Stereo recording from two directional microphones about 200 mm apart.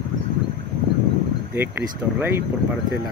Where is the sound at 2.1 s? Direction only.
10° right (ahead or behind).